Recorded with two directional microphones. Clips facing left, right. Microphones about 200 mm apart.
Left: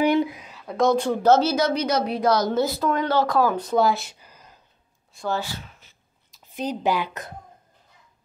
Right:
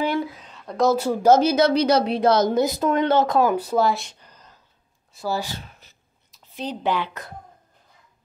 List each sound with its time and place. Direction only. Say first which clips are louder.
0.0 s a woman's voice: left 4 dB; 15° left (ahead or behind); by 1.6 s 15° right (ahead or behind)
1.6 s speech: right 4 dB; 30° right (ahead or behind)
3.5 s speech: even; 5° right (ahead or behind)
5.1 s speech: right 1 dB; 5° right (ahead or behind)
5.5 s a sound: right 1 dB; 40° right (ahead or behind)
6.5 s speech: left 1 dB; 15° left (ahead or behind)